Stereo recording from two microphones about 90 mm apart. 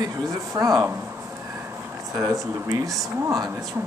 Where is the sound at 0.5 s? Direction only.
40° right (ahead or behind).